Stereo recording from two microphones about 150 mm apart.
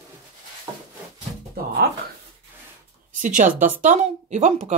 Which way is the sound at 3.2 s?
60° right (ahead or behind).